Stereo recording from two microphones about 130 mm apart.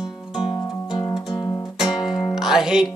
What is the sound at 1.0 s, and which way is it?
Music, 35° left (ahead or behind).